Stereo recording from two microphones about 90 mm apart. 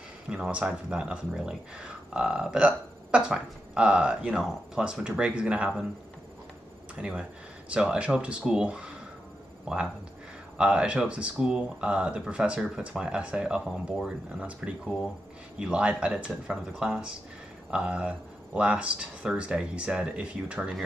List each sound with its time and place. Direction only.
0.3 s speech: 10° right (ahead or behind)
7.0 s speech: 10° right (ahead or behind)
10.6 s speech: 10° right (ahead or behind)